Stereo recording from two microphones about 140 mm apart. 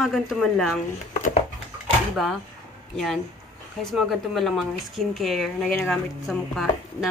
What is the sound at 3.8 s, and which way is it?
Speech, centre (ahead or behind).